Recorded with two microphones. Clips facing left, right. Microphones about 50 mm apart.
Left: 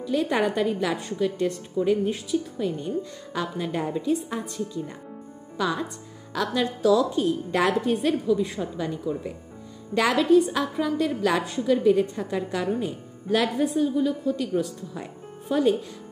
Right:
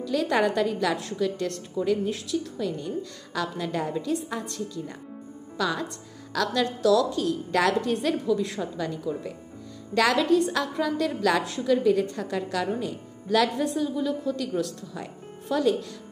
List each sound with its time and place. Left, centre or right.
0.0 s a woman's voice: left
2.8 s a woman's voice: left